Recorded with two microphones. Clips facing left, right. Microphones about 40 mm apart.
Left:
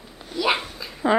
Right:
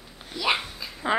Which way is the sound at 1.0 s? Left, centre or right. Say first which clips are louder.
Left 5 dB; centre.